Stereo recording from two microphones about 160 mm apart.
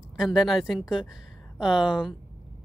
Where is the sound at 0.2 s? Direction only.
5° right (ahead or behind).